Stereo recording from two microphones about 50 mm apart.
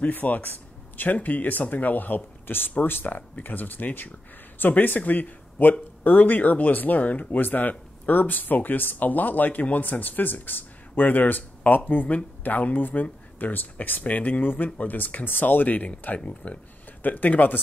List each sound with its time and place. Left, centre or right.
0.0 s speech: left